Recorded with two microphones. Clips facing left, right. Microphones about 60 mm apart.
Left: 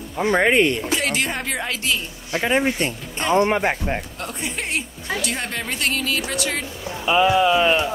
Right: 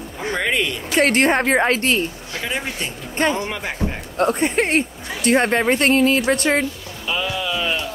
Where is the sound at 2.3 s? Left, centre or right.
Left.